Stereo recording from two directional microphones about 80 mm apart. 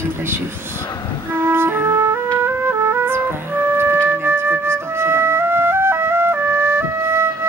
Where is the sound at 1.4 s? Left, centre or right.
Right.